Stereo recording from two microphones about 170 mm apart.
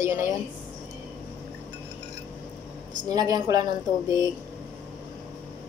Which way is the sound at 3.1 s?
25° right (ahead or behind).